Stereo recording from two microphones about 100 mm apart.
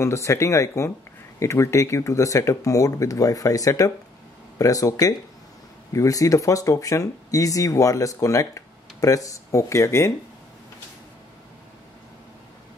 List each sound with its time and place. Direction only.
0.0 s speech: 30° left (ahead or behind)